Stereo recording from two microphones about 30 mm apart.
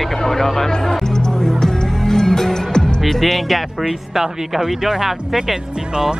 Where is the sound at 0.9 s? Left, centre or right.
Centre.